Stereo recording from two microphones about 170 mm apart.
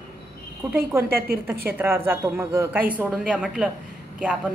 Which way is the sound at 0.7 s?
15° right (ahead or behind).